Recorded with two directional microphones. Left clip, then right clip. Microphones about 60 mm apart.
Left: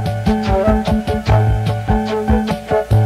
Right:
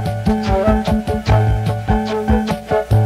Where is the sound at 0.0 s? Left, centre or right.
Right.